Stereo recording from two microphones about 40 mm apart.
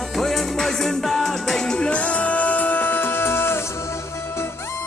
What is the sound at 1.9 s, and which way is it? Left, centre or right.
Music, left.